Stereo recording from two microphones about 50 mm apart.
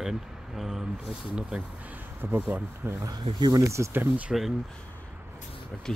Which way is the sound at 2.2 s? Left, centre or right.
Right.